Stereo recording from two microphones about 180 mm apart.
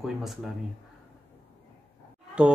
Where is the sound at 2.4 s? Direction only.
5° right (ahead or behind).